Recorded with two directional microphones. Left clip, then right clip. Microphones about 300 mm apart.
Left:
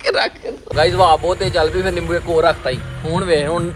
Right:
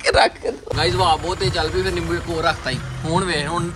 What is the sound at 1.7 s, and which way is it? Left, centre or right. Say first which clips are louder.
Speech: left 3 dB; right.